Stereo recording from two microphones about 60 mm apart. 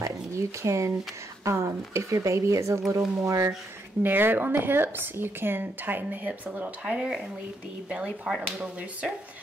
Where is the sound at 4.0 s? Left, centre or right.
Right.